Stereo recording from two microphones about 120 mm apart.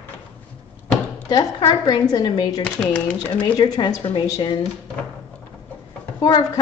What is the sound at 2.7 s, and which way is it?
Speech, 10° left (ahead or behind).